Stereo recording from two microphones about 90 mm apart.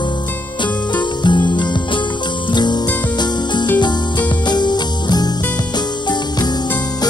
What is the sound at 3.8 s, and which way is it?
Music, 55° left (ahead or behind).